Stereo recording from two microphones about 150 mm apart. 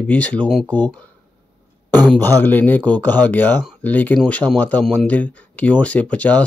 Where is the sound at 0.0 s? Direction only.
10° left (ahead or behind).